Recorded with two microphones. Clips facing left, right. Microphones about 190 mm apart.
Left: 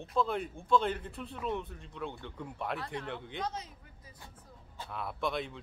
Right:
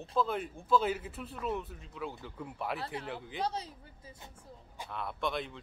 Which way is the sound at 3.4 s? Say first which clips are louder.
Right 6 dB; 30° right (ahead or behind).